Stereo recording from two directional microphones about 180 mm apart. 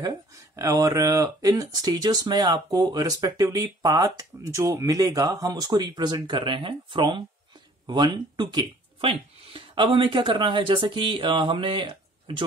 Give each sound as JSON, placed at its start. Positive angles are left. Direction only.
{"t": 0.6, "sound": "speech", "side_deg": -15}